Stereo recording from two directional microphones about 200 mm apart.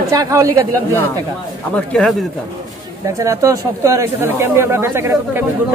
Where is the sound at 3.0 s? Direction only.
15° right (ahead or behind).